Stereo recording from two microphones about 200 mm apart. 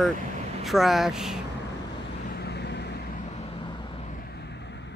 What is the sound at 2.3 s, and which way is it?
Vehicle, 55° left (ahead or behind).